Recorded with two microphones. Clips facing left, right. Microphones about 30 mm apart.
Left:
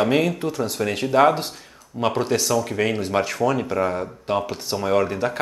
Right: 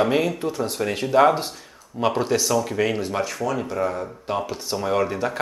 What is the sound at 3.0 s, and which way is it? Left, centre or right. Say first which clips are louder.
Speech: left 4 dB; left.